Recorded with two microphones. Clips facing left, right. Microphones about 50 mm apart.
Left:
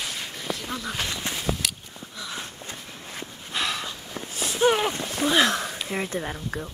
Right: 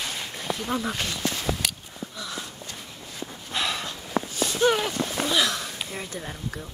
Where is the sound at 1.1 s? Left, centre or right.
Left.